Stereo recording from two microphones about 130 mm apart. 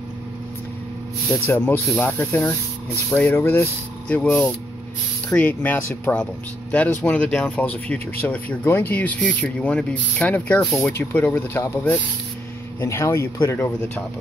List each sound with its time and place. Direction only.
1.3 s speech: 15° left (ahead or behind)